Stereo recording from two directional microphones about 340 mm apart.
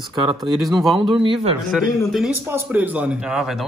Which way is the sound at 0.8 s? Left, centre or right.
Centre.